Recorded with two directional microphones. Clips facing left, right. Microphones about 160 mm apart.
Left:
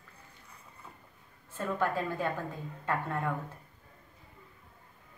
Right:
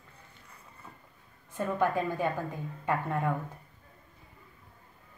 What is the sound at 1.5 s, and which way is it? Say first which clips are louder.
A woman's voice: right 3 dB; 15° right (ahead or behind).